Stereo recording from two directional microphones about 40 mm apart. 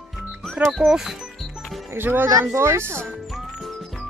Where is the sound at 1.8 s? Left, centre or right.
Right.